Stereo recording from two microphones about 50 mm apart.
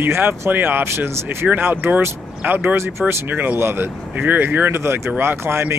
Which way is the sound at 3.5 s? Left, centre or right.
Right.